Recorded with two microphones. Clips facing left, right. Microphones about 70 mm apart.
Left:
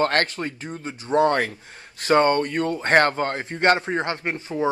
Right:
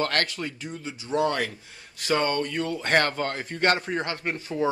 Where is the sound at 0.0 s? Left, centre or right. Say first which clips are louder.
Left 5 dB; left.